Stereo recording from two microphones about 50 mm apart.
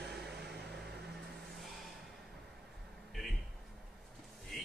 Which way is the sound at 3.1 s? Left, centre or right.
Centre.